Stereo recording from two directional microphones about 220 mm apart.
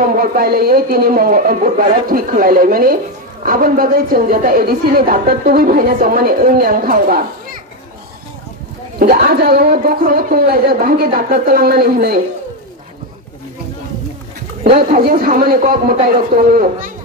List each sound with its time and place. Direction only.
0.0 s speech: 40° right (ahead or behind)
9.0 s speech: 45° right (ahead or behind)
14.6 s speech: 45° right (ahead or behind)